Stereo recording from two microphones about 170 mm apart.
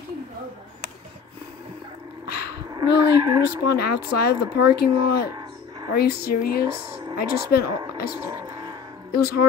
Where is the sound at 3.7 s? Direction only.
65° left (ahead or behind).